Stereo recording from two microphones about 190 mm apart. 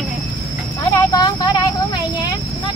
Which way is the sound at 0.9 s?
20° left (ahead or behind).